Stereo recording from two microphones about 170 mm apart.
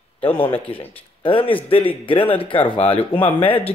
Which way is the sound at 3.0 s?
10° left (ahead or behind).